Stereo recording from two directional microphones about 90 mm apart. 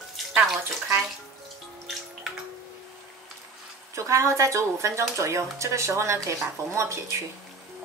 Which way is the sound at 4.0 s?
35° right (ahead or behind).